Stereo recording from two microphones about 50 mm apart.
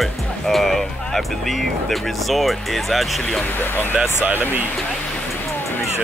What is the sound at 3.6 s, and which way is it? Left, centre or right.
Speech, left.